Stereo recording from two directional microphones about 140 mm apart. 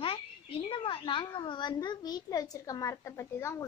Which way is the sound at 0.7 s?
40° left (ahead or behind).